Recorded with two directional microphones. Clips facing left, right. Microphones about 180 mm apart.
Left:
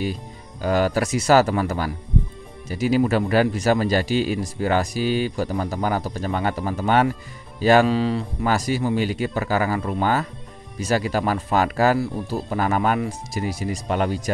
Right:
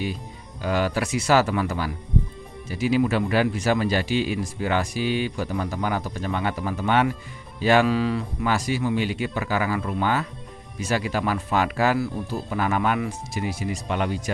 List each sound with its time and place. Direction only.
0.6 s speech: 40° left (ahead or behind)
8.5 s speech: 40° left (ahead or behind)